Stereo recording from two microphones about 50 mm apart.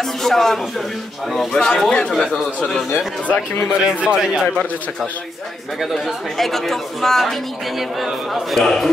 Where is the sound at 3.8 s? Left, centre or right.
Centre.